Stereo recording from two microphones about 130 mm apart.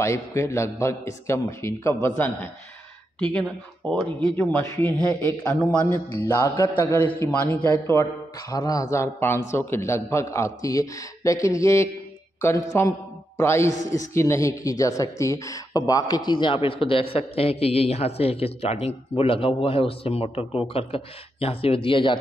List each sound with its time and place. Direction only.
0.0 s a man's voice: 20° left (ahead or behind); by 5.8 s 5° left (ahead or behind)
6.4 s a man's voice: 20° left (ahead or behind); by 22.2 s 40° left (ahead or behind)